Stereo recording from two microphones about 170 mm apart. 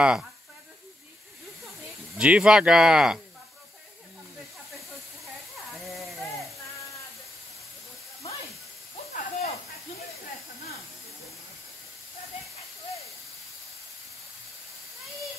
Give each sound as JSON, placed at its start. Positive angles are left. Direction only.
{"t": 0.0, "sound": "speech", "side_deg": -5}
{"t": 2.1, "sound": "speech", "side_deg": -5}
{"t": 9.1, "sound": "snake", "side_deg": 50}